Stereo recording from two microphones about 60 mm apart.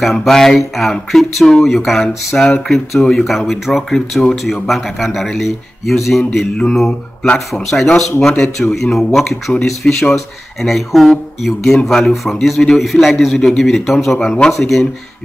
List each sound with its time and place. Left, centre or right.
0.0 s a man's voice: centre